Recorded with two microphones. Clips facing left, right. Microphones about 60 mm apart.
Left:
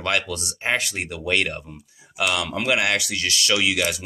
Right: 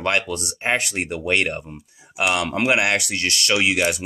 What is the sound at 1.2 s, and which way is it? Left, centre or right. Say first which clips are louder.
Speech: right 1 dB; centre.